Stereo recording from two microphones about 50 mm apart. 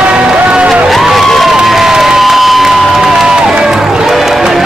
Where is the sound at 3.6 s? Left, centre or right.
Centre.